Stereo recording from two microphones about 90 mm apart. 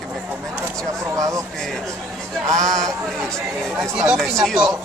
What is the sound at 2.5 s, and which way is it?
Speech, 5° left (ahead or behind).